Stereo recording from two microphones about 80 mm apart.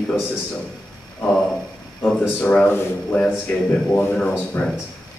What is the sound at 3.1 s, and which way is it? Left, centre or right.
Speech, centre.